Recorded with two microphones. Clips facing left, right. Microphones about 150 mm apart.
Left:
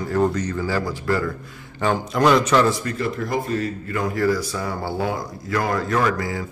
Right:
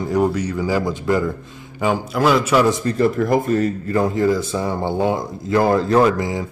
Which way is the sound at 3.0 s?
45° right (ahead or behind).